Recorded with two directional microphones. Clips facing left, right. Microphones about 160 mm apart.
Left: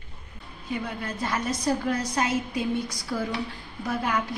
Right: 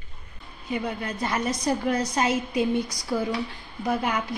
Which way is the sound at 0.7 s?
20° right (ahead or behind).